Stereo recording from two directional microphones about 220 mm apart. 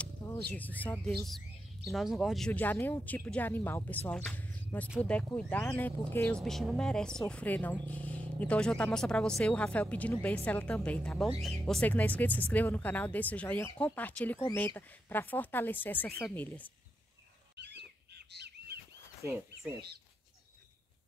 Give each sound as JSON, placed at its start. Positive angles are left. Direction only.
{"t": 0.0, "sound": "speech", "side_deg": 10}
{"t": 17.6, "sound": "bird", "side_deg": -50}